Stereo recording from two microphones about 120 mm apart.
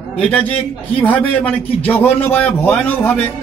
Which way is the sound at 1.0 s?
15° left (ahead or behind).